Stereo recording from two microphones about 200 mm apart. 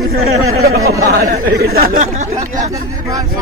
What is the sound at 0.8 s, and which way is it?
Speech, 15° right (ahead or behind).